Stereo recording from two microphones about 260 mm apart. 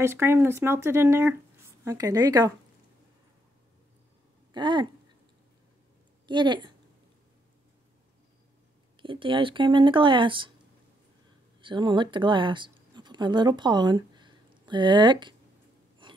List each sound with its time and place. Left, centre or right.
0.0 s speech: centre
4.6 s speech: centre
6.2 s speech: centre
9.0 s speech: centre
11.6 s speech: centre